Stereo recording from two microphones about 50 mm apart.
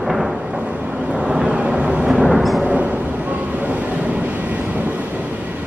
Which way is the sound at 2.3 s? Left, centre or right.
Centre.